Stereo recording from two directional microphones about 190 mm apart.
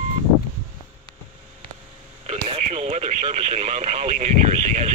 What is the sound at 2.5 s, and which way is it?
Speech, 35° right (ahead or behind).